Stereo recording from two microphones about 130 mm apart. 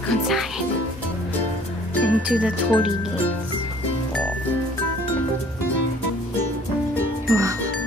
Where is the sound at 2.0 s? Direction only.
10° right (ahead or behind).